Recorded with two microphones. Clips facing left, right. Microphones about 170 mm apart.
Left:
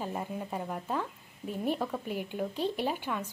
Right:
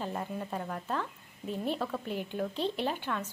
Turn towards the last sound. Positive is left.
turn(degrees=10)  # may be behind; listen again after turning